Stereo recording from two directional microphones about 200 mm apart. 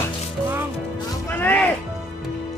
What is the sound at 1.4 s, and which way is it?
Speech, 10° left (ahead or behind).